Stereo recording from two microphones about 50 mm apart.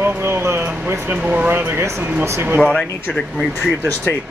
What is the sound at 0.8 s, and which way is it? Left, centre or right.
Speech, right.